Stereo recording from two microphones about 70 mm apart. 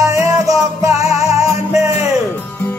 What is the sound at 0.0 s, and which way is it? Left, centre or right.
Music, right.